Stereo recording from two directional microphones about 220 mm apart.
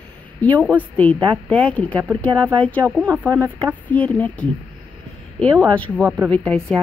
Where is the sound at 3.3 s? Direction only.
15° right (ahead or behind).